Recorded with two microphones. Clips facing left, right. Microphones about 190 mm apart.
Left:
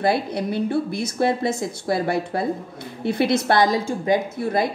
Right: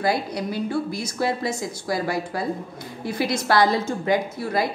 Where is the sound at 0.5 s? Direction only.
60° left (ahead or behind).